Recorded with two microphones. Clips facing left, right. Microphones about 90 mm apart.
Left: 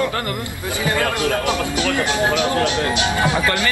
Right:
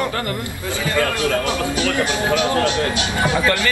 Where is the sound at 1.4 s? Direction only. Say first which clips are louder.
Even; 20° left (ahead or behind).